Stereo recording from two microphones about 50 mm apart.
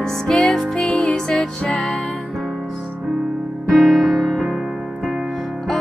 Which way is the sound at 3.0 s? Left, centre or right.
Centre.